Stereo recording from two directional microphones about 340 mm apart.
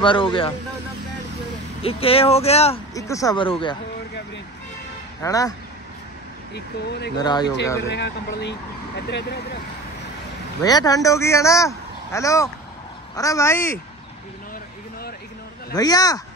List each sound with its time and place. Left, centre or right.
0.0 s speech: centre
1.8 s speech: centre
5.2 s speech: centre
6.5 s speech: left
7.2 s speech: centre
7.9 s speech: left
10.6 s speech: centre
15.7 s speech: centre